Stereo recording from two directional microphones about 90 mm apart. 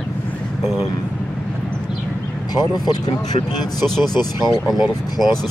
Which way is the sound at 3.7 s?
5° left (ahead or behind).